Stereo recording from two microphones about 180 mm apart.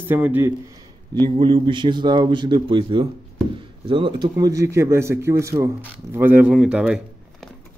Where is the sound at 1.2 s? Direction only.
30° right (ahead or behind); by 7.0 s 5° right (ahead or behind).